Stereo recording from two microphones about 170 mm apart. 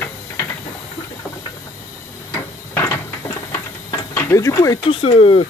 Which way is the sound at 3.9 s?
20° left (ahead or behind).